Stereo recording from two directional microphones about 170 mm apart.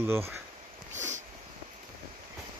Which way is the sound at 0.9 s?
45° right (ahead or behind).